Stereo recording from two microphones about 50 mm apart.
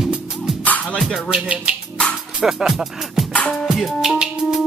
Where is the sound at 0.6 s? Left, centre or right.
Left.